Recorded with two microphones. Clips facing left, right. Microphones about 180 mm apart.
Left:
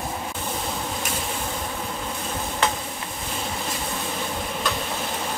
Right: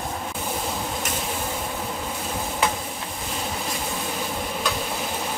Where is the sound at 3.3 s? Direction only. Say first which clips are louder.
Even; centre (ahead or behind).